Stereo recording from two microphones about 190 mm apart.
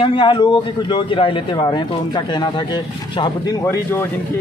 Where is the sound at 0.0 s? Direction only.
25° left (ahead or behind).